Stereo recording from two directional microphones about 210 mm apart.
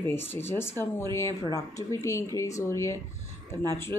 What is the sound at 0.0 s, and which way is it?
Speech, 10° left (ahead or behind).